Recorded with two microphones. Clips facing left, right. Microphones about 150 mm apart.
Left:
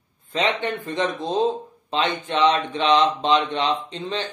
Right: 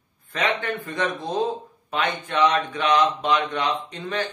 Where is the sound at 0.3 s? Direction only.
20° left (ahead or behind).